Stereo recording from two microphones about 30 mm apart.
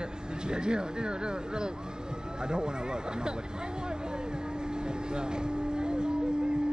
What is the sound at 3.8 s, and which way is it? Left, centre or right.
Vehicle, right.